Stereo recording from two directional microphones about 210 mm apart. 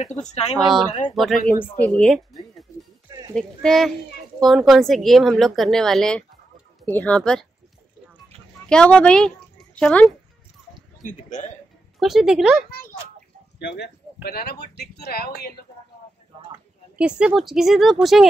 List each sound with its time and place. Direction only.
0.1 s speech: 30° left (ahead or behind)
1.1 s speech: centre (ahead or behind)
3.3 s speech: centre (ahead or behind)
8.6 s speech: 5° left (ahead or behind)
11.0 s a man's voice: 35° left (ahead or behind)
12.0 s speech: centre (ahead or behind)
13.6 s speech: 55° left (ahead or behind)
17.0 s speech: 5° right (ahead or behind)